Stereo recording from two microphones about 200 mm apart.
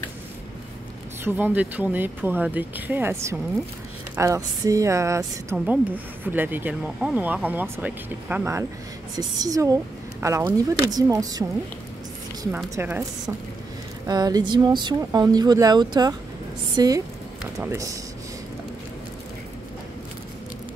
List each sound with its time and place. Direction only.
1.2 s a woman's voice: 10° right (ahead or behind)
12.5 s a woman's voice: 15° right (ahead or behind)
14.0 s a woman's voice: 20° right (ahead or behind)